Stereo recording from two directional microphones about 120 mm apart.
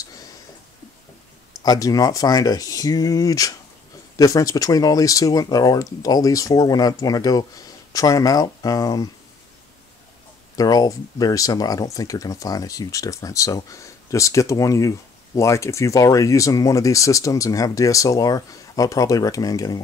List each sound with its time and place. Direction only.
0.0 s a sound: 30° left (ahead or behind)
1.6 s speech: 30° left (ahead or behind)
10.5 s speech: 30° left (ahead or behind)